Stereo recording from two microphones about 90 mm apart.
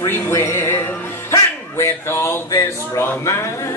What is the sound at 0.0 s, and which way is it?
Music, 30° left (ahead or behind).